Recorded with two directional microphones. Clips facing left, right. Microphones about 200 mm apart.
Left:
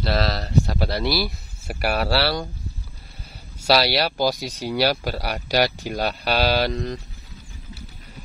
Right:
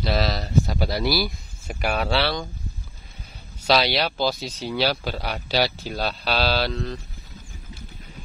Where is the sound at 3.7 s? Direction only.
10° left (ahead or behind).